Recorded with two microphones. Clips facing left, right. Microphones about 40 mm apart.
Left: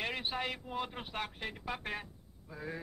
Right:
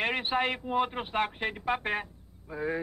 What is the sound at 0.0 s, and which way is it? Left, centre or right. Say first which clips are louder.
Speech: right 8 dB; right.